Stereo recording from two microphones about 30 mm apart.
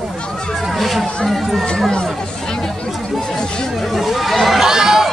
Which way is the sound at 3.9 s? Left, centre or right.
Centre.